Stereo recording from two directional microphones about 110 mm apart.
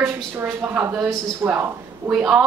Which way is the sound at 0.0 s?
20° right (ahead or behind).